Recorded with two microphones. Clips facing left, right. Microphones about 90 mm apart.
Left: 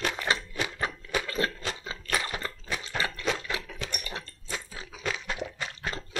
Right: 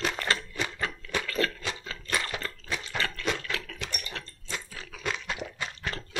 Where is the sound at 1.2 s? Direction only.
25° left (ahead or behind).